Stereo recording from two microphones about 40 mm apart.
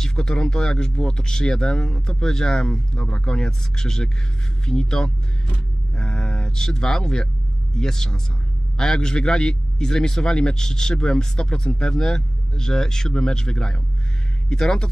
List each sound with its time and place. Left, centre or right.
0.0 s a man's voice: centre